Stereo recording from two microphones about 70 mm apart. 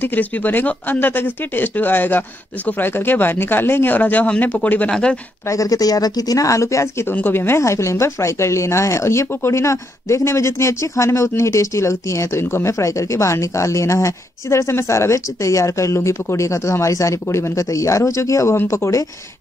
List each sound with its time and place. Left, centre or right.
0.0 s speech: left
5.5 s speech: left
7.1 s speech: left